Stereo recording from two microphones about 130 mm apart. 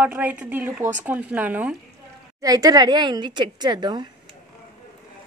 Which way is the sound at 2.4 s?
30° right (ahead or behind).